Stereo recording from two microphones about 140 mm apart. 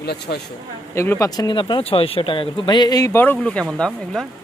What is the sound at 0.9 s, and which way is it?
Speech, 20° left (ahead or behind).